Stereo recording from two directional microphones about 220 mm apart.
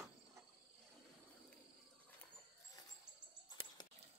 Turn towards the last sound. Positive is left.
turn(degrees=20)  # may be behind; listen again after turning